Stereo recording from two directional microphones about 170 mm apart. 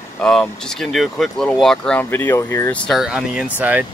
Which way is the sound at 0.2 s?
5° left (ahead or behind).